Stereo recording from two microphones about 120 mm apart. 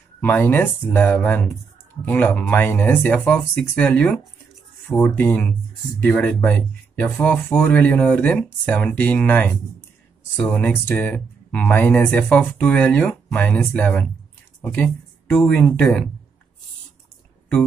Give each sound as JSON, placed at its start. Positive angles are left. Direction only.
{"t": 0.2, "sound": "speech", "side_deg": 15}